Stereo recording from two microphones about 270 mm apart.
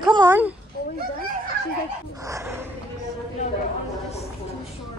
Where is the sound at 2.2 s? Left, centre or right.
Centre.